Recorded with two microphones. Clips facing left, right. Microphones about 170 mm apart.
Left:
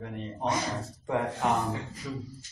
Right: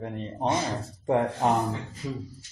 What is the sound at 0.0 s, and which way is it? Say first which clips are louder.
Speech: right 3 dB; 30° right (ahead or behind).